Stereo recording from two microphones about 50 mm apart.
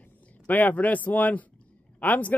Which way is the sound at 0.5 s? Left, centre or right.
Left.